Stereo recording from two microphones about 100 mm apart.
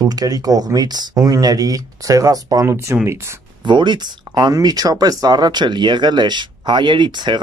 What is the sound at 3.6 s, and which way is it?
Speech, 50° right (ahead or behind).